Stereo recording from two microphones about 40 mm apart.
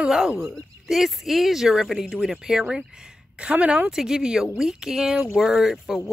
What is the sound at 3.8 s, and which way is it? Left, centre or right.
Speech, centre.